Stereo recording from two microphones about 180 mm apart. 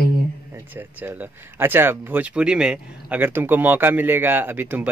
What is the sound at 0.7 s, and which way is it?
Speech, 10° right (ahead or behind).